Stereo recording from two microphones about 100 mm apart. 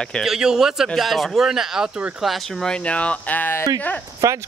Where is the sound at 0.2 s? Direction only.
5° right (ahead or behind); by 3.6 s 20° left (ahead or behind).